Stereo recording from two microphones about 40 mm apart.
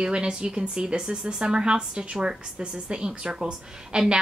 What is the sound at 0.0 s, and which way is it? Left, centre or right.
Speech, right.